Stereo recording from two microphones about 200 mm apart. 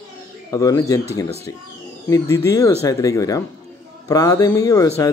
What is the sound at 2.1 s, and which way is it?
Speech, 15° left (ahead or behind).